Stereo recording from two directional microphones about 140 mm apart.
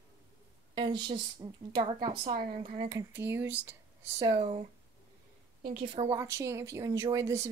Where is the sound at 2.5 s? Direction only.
45° right (ahead or behind).